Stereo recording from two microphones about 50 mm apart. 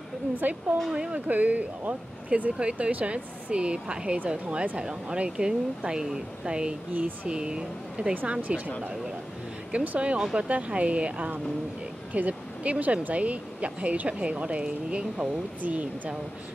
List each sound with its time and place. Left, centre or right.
0.4 s speech: right
0.9 s speech: centre
1.2 s speech: right
6.9 s speech: right
7.3 s speech: centre
8.4 s speech: right
9.7 s speech: right